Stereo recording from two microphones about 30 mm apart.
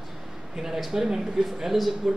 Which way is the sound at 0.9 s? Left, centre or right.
Centre.